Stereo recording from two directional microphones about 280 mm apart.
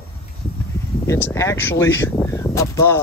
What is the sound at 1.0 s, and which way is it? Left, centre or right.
Speech, centre.